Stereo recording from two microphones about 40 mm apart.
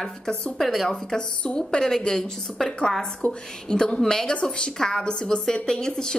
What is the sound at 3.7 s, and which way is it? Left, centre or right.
A woman's voice, centre.